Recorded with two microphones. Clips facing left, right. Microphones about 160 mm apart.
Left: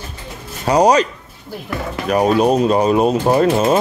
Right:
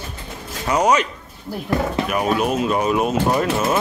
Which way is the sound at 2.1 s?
35° left (ahead or behind).